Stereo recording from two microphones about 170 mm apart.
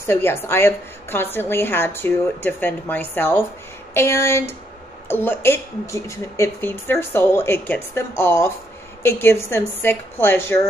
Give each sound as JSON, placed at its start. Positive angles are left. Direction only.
{"t": 0.0, "sound": "a woman's voice", "side_deg": 15}